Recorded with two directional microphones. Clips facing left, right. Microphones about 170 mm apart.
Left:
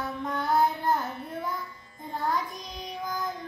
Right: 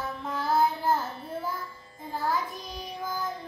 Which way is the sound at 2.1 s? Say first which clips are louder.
Even; 5° right (ahead or behind).